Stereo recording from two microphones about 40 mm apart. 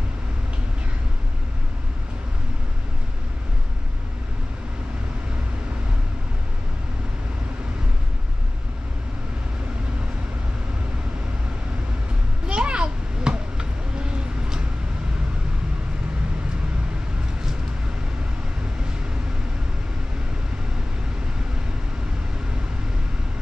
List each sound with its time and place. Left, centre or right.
12.4 s children playing: right